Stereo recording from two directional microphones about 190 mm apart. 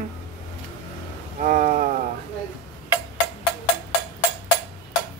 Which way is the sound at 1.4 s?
45° right (ahead or behind).